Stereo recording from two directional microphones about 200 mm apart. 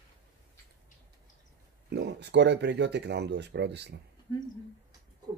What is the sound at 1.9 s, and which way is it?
Speech, 55° right (ahead or behind).